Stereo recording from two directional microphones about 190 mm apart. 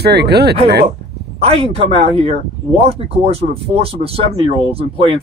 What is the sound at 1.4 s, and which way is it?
Speech, 30° right (ahead or behind).